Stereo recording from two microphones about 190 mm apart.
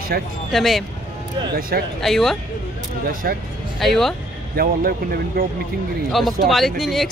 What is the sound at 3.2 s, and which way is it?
Speech, 55° right (ahead or behind).